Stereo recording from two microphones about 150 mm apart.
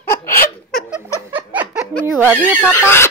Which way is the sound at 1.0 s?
10° right (ahead or behind).